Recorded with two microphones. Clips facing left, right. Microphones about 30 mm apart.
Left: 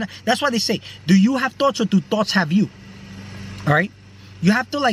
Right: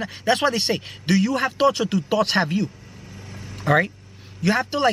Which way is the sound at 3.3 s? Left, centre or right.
Left.